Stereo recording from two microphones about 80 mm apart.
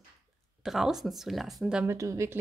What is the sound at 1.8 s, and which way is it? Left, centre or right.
Speech, right.